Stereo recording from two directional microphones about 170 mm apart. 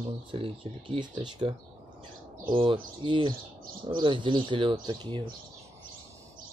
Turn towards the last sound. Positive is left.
turn(degrees=-25)  # may be behind; listen again after turning